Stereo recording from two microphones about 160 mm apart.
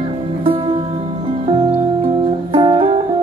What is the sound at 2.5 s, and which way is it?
Music, 30° right (ahead or behind).